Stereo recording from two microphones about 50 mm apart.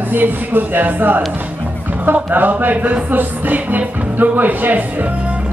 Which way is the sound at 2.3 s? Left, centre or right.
Right.